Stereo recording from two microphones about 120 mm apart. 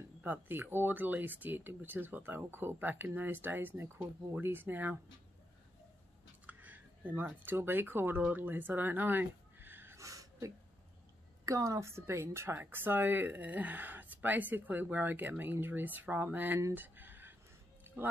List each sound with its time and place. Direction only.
0.2 s speech: 15° right (ahead or behind)
6.4 s speech: 15° right (ahead or behind)
17.8 s music: 20° right (ahead or behind)